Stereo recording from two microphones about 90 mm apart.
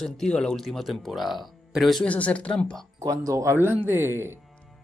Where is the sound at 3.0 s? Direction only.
40° right (ahead or behind).